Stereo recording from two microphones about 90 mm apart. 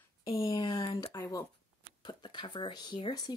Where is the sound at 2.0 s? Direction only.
55° left (ahead or behind).